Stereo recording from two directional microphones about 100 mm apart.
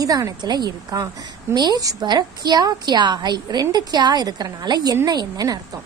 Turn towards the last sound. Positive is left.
turn(degrees=-35)  # may be behind; listen again after turning